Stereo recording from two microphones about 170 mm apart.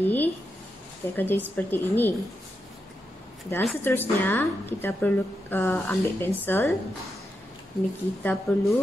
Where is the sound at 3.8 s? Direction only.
10° left (ahead or behind).